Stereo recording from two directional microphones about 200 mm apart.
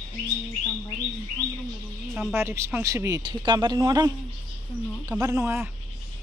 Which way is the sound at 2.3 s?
10° right (ahead or behind).